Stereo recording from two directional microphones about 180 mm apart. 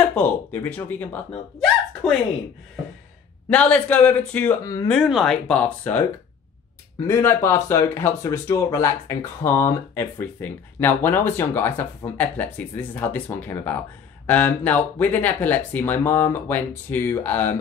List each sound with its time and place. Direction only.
0.1 s speech: 10° left (ahead or behind)
3.4 s speech: 5° left (ahead or behind)
5.0 s speech: centre (ahead or behind)
7.1 s speech: 15° left (ahead or behind)